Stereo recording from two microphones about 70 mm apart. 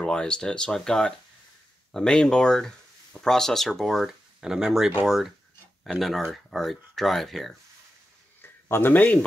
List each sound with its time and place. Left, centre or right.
0.0 s speech: centre
8.4 s a sound: left
8.9 s speech: left